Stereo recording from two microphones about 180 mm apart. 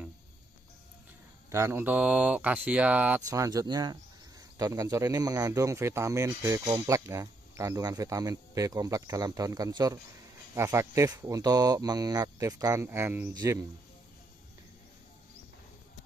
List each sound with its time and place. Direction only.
1.5 s speech: 15° right (ahead or behind)
3.2 s speech: 20° right (ahead or behind)